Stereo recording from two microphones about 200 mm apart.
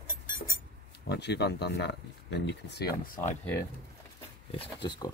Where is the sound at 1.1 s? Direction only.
55° left (ahead or behind).